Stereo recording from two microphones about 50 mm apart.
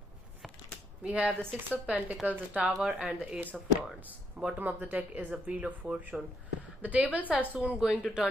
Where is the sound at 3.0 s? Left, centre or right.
Right.